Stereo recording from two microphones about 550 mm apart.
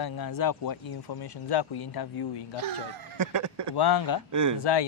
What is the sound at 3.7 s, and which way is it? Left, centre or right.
Speech, left.